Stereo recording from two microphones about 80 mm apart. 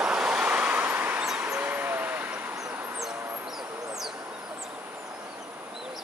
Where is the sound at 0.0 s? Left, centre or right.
Centre.